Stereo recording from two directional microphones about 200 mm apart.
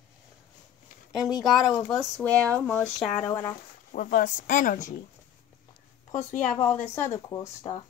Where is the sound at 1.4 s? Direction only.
Centre (ahead or behind).